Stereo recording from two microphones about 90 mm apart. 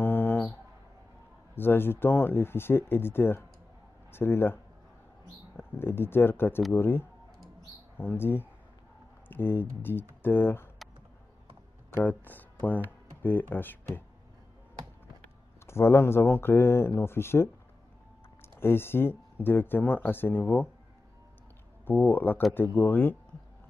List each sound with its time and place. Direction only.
0.0 s music: 25° left (ahead or behind)
1.5 s speech: 25° left (ahead or behind)
5.6 s speech: 25° left (ahead or behind)
12.0 s speech: 20° left (ahead or behind)
15.6 s speech: 30° left (ahead or behind)
18.6 s speech: 25° left (ahead or behind)
21.8 s speech: 20° left (ahead or behind)